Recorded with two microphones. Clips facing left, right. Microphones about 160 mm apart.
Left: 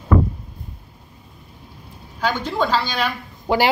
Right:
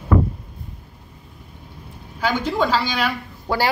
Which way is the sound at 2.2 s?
10° right (ahead or behind).